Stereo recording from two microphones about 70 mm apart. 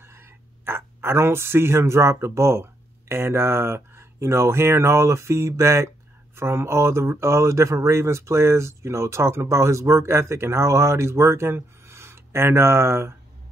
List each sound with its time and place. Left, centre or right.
0.0 s speech: right